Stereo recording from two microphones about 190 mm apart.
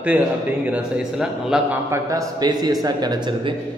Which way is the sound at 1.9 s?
15° right (ahead or behind).